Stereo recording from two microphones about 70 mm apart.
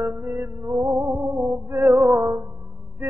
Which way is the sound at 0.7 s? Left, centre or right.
Centre.